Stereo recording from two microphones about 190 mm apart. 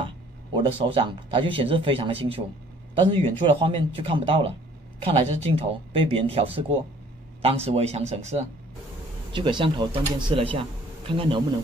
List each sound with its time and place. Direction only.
0.0 s speech: 25° right (ahead or behind)
9.3 s speech: 25° right (ahead or behind)